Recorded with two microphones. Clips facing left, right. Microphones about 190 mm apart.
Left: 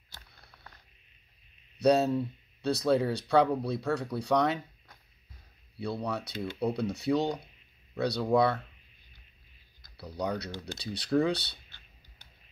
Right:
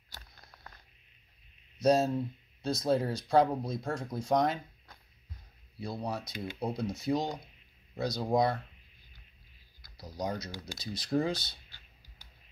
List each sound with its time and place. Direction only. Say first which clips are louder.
1.8 s speech: left 2 dB; 65° left (ahead or behind)
6.0 s speech: left 3 dB; 70° left (ahead or behind)
9.9 s speech: left 3 dB; 65° left (ahead or behind)